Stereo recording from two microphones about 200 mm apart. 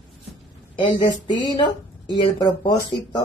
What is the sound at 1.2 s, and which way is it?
Speech, 25° left (ahead or behind).